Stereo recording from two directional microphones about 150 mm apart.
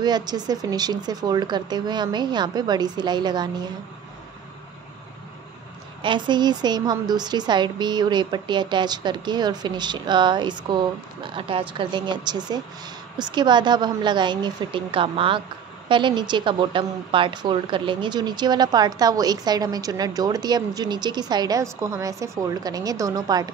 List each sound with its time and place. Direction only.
0.0 s a woman's voice: 25° right (ahead or behind)
6.0 s a woman's voice: 30° right (ahead or behind)